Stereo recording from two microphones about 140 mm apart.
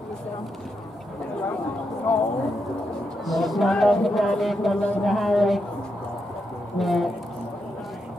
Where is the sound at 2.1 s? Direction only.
10° left (ahead or behind).